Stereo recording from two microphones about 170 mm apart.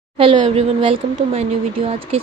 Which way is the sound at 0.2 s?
35° right (ahead or behind).